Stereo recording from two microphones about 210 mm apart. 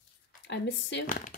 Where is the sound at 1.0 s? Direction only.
40° left (ahead or behind).